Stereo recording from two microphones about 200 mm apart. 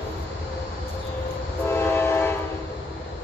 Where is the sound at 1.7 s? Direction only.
10° left (ahead or behind).